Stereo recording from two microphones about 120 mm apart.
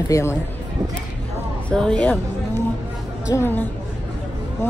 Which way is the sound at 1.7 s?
5° left (ahead or behind).